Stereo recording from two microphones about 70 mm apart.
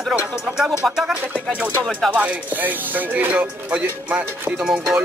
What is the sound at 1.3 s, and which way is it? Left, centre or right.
Speech, centre.